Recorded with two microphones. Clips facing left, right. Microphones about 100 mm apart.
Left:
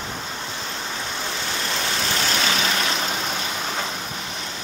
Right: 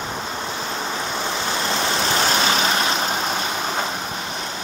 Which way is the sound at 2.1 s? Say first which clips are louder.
Right 3 dB; 30° right (ahead or behind).